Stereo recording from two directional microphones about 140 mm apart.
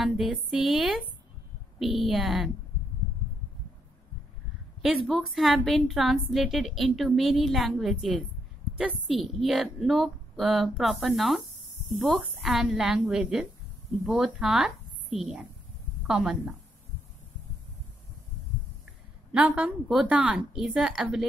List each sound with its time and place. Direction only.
0.0 s a woman's voice: 5° right (ahead or behind)
4.8 s a woman's voice: centre (ahead or behind)
19.3 s a woman's voice: 10° right (ahead or behind)